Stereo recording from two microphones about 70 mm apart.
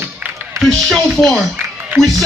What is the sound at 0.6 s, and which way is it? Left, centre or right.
Speech, centre.